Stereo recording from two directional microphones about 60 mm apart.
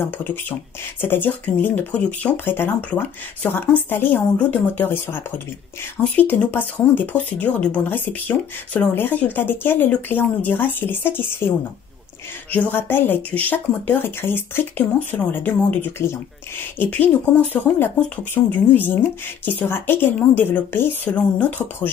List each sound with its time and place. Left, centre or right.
0.0 s speech: left
2.4 s speech: left
6.0 s speech: left
14.8 s speech: left